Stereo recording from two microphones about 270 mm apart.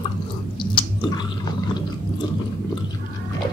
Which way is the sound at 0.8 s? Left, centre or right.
Centre.